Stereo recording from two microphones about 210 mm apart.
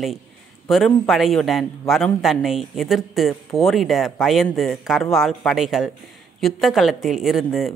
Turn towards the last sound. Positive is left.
turn(degrees=0)  # may be behind; listen again after turning